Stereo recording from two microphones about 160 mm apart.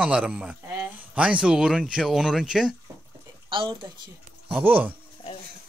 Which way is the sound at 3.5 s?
30° right (ahead or behind).